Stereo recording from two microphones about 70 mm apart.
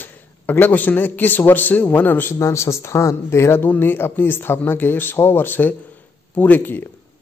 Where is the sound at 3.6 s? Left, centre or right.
Left.